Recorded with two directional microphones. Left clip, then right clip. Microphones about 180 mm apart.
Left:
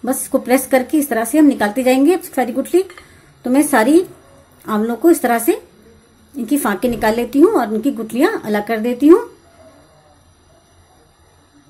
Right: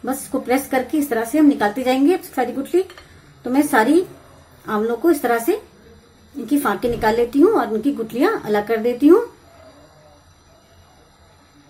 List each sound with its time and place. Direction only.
0.0 s a woman's voice: 30° left (ahead or behind)
1.2 s speech: centre (ahead or behind)
1.8 s a woman's voice: 35° left (ahead or behind)